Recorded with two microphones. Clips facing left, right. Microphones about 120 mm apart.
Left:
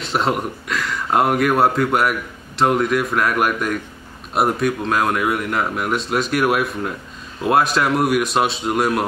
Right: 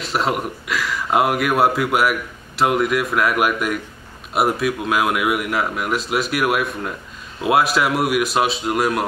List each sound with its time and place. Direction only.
0.0 s speech: centre (ahead or behind)